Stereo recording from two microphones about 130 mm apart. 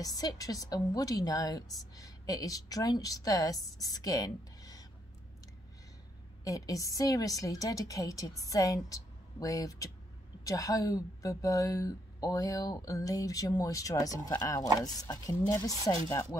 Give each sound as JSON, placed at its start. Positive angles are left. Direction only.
{"t": 0.0, "sound": "a woman's voice", "side_deg": 30}
{"t": 6.4, "sound": "a woman's voice", "side_deg": 25}